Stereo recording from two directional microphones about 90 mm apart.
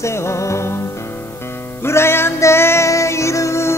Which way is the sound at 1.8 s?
30° left (ahead or behind).